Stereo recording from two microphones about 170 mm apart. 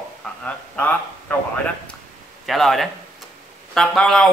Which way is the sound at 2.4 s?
Centre (ahead or behind).